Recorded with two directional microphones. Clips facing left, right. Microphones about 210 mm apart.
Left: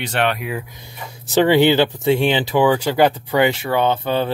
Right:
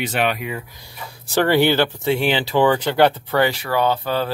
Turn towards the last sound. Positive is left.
turn(degrees=20)  # may be behind; listen again after turning